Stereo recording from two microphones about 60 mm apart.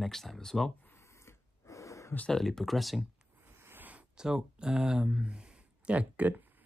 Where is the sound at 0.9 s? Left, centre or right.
Left.